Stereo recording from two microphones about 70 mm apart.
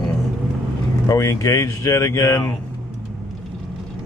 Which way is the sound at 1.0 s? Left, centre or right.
Left.